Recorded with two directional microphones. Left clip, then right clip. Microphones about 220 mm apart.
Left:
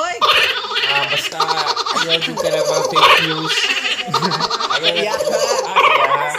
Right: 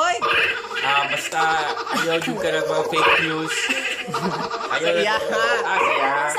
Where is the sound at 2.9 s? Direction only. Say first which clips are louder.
Left 7 dB; 50° left (ahead or behind).